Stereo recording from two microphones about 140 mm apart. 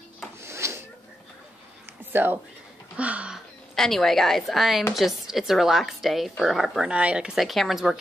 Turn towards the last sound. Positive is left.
turn(degrees=0)  # may be behind; listen again after turning